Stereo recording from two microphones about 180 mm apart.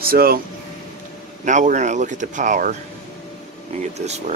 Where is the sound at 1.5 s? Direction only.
40° right (ahead or behind).